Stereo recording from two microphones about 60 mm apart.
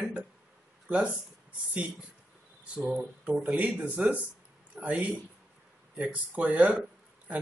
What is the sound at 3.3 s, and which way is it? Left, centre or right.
Speech, right.